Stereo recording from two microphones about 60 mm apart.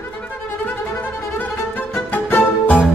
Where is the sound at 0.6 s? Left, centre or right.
Left.